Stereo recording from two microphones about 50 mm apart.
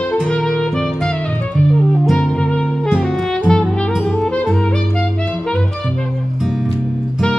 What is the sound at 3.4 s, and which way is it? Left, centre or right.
Music, centre.